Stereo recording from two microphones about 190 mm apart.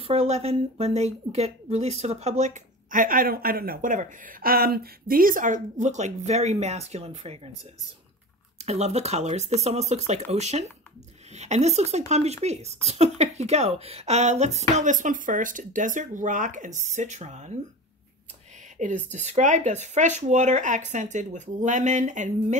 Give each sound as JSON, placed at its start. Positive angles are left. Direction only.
{"t": 0.0, "sound": "a woman's voice", "side_deg": -30}
{"t": 8.5, "sound": "a woman's voice", "side_deg": -35}
{"t": 18.8, "sound": "a woman's voice", "side_deg": -40}